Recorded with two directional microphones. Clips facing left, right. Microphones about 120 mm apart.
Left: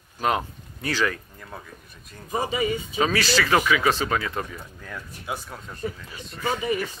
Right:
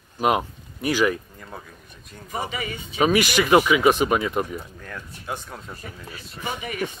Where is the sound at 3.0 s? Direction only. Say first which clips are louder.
Right 4 dB; 15° right (ahead or behind).